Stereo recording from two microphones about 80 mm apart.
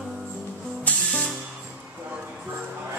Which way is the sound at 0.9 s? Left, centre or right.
Centre.